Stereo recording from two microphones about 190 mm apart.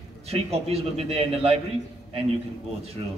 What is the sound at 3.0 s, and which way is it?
Speech, 30° right (ahead or behind).